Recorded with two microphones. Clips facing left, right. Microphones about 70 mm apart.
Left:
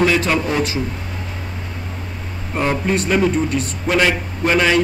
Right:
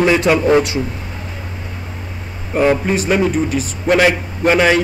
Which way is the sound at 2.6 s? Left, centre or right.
Centre.